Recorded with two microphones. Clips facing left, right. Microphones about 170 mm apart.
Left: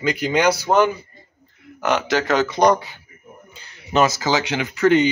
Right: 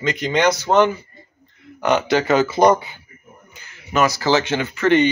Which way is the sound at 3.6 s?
30° left (ahead or behind).